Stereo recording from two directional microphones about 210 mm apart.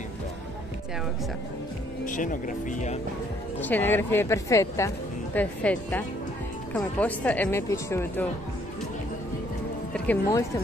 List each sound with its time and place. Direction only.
2.0 s speech: 40° left (ahead or behind)
3.6 s speech: 10° left (ahead or behind)
9.9 s speech: 5° left (ahead or behind)